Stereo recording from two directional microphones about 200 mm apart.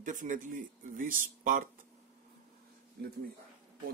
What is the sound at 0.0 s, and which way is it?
Speech, 40° right (ahead or behind).